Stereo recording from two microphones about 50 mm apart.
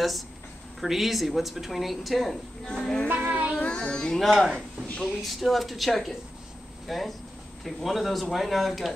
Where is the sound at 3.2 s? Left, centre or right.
Right.